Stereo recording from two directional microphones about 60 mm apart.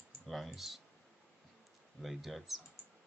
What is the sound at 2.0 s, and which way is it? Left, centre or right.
Speech, centre.